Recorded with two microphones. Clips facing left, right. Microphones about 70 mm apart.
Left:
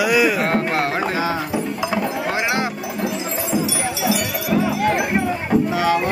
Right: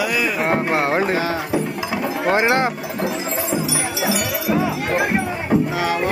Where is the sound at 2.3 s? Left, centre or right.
Right.